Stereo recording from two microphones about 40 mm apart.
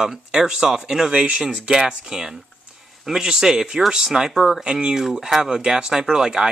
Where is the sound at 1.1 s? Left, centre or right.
Right.